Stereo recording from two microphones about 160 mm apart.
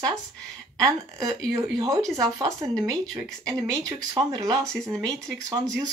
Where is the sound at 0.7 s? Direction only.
25° right (ahead or behind).